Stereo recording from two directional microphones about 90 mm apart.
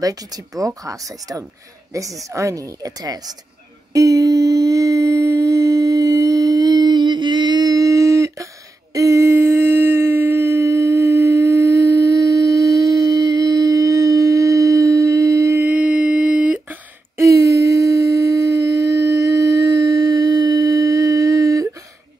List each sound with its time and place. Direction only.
0.0 s speech: 40° right (ahead or behind)
3.9 s humming: 40° right (ahead or behind)
15.6 s a sound: 15° right (ahead or behind)
17.2 s humming: 40° right (ahead or behind)